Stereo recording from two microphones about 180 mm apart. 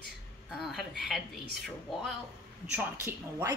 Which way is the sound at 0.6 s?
Centre (ahead or behind).